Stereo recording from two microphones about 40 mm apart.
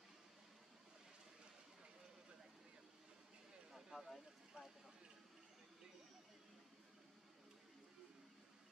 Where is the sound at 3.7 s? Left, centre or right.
Centre.